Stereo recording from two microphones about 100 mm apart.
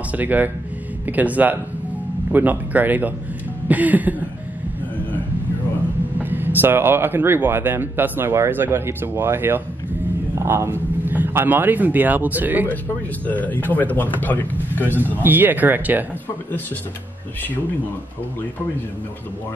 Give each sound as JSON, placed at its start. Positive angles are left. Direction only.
{"t": 0.1, "sound": "speech", "side_deg": -15}
{"t": 3.6, "sound": "a sound", "side_deg": -15}
{"t": 6.2, "sound": "speech", "side_deg": -20}
{"t": 13.3, "sound": "speech", "side_deg": 15}
{"t": 15.1, "sound": "speech", "side_deg": -20}